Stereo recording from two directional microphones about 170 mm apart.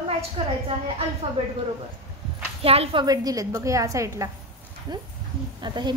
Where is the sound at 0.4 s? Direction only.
30° right (ahead or behind).